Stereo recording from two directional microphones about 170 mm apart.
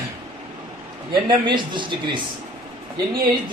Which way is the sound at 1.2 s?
25° right (ahead or behind).